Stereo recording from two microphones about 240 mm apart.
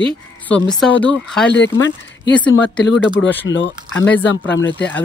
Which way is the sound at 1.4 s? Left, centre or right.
Left.